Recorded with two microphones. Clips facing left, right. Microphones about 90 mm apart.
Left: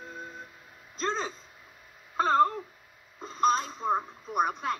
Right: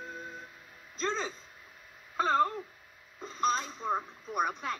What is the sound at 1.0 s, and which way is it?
Speech, 45° left (ahead or behind).